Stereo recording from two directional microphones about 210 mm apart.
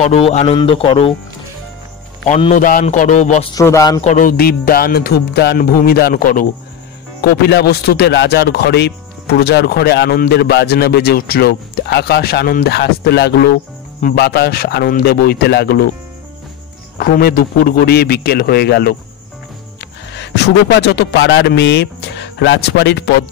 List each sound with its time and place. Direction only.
0.0 s speech: 30° left (ahead or behind)
2.2 s a man's voice: 30° left (ahead or behind)
3.5 s a man's voice: 15° left (ahead or behind)
4.0 s speech: 35° left (ahead or behind)
17.0 s speech: 45° left (ahead or behind)
20.2 s speech: 55° left (ahead or behind)